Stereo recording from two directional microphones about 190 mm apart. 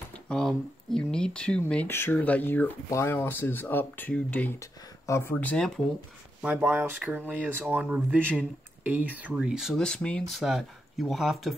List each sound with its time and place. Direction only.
0.1 s speech: 5° left (ahead or behind)
6.4 s speech: 5° right (ahead or behind)